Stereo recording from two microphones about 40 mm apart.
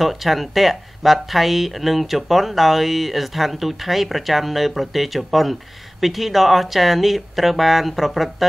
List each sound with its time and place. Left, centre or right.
0.0 s speech: centre